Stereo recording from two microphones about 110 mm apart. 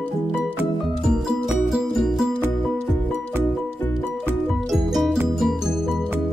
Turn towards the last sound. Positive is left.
turn(degrees=0)  # may be behind; listen again after turning